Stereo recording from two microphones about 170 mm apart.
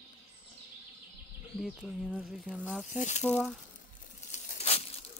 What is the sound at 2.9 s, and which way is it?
Speech, 45° left (ahead or behind).